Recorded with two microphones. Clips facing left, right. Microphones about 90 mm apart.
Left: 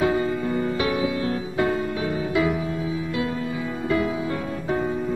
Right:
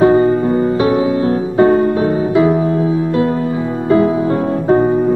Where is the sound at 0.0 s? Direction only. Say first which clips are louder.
Right 12 dB; 40° right (ahead or behind).